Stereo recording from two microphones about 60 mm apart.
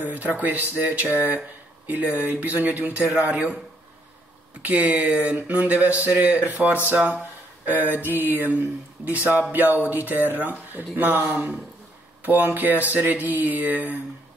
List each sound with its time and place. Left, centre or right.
0.0 s speech: right
4.6 s speech: right